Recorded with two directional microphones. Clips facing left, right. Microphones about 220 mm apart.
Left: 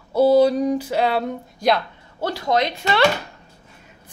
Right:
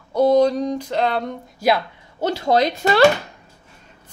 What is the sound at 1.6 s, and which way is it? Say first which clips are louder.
Speech: right 1 dB; 5° right (ahead or behind).